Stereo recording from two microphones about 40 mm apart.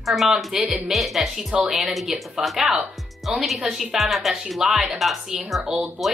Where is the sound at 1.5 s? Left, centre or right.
Centre.